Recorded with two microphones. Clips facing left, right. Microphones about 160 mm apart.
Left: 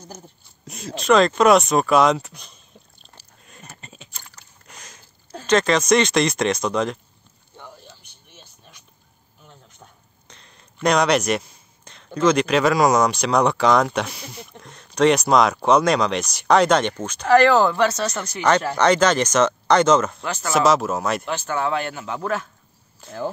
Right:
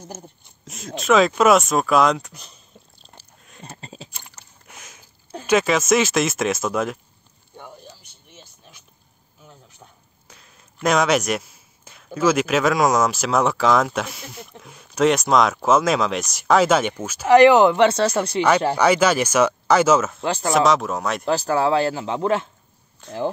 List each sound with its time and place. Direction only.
0.0 s speech: 20° right (ahead or behind)
0.7 s speech: centre (ahead or behind)
2.7 s a sound: centre (ahead or behind)
3.6 s a sound: 30° right (ahead or behind)
4.6 s a sound: 5° right (ahead or behind)
5.3 s speech: 10° right (ahead or behind)
7.5 s a sound: 10° right (ahead or behind)
9.4 s speech: 5° right (ahead or behind)
17.3 s speech: 15° right (ahead or behind)
18.8 s speech: 10° right (ahead or behind)
21.3 s speech: 35° right (ahead or behind)
23.0 s speech: centre (ahead or behind)